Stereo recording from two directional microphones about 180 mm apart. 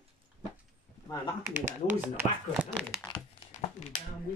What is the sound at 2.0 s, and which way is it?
Speech, 10° right (ahead or behind).